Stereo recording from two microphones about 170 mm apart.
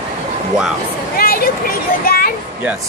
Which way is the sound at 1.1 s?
60° left (ahead or behind).